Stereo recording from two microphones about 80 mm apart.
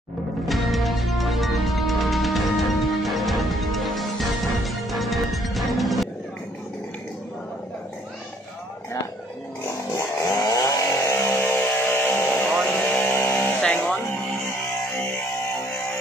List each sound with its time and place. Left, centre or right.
0.5 s music: centre
9.7 s chainsaw: left
10.2 s chainsaw: left
12.6 s vehicle: left
13.6 s vehicle: centre